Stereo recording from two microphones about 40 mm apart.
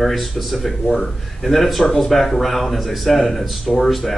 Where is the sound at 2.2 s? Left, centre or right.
Centre.